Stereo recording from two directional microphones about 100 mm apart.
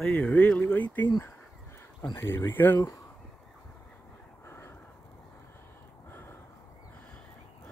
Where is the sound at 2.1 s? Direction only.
25° left (ahead or behind).